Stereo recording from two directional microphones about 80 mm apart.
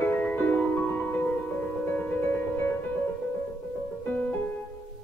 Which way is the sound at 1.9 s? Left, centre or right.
Left.